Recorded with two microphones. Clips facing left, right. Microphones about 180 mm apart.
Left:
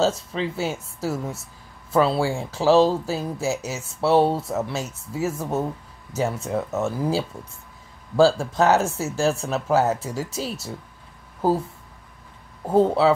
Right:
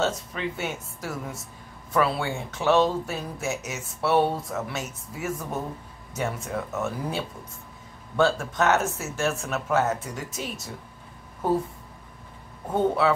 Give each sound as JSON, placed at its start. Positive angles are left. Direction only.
{"t": 0.0, "sound": "speech", "side_deg": 30}
{"t": 12.6, "sound": "speech", "side_deg": 30}